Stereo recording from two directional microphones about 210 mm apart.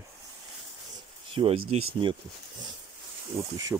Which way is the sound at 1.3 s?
25° right (ahead or behind).